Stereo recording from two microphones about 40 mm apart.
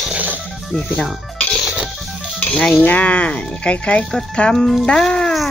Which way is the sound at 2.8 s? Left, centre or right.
Left.